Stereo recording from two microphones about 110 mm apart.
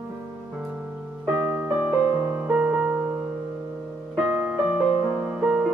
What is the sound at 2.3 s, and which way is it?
Music, 15° right (ahead or behind).